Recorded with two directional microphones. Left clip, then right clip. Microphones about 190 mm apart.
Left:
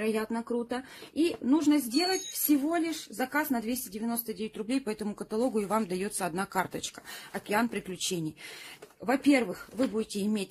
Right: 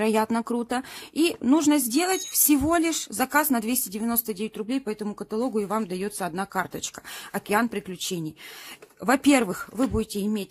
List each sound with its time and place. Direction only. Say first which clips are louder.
0.0 s speech: right 8 dB; 45° right (ahead or behind)
4.6 s speech: right 3 dB; 15° right (ahead or behind)
9.0 s speech: right 5 dB; 40° right (ahead or behind)
10.2 s speech: right 3 dB; 15° right (ahead or behind)